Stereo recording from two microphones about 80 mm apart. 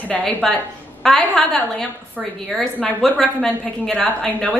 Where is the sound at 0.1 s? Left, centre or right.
Centre.